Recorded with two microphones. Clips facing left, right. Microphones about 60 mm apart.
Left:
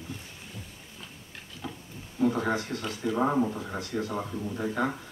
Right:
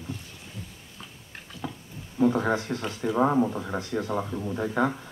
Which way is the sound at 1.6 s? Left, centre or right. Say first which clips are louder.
Right 3 dB; right.